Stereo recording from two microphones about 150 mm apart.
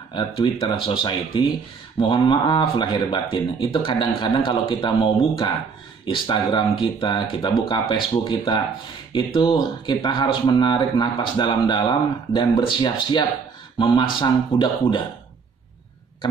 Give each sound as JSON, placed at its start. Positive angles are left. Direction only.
{"t": 0.1, "sound": "speech", "side_deg": 35}